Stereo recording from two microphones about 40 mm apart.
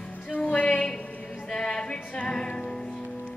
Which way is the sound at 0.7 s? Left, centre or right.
Centre.